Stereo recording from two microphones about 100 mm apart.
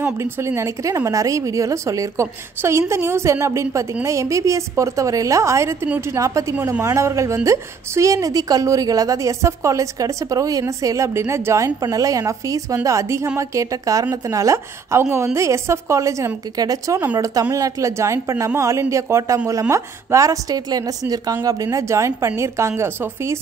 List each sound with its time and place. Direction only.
0.0 s a woman's voice: 25° right (ahead or behind)